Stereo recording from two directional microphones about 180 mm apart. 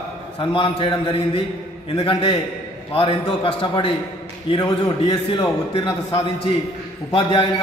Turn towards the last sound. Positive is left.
turn(degrees=30)  # may be behind; listen again after turning